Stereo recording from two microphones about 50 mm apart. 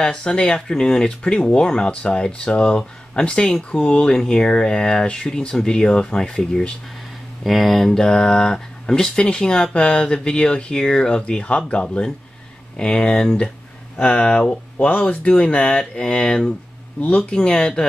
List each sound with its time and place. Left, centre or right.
0.0 s speech: centre
7.4 s speech: centre